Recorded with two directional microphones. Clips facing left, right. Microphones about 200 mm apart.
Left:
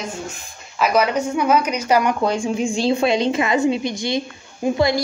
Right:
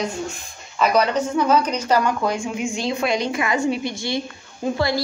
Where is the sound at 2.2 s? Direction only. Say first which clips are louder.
Left 3 dB; 30° left (ahead or behind).